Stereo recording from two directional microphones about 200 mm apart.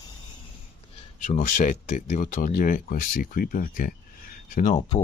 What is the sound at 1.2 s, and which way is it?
Speech, 40° left (ahead or behind).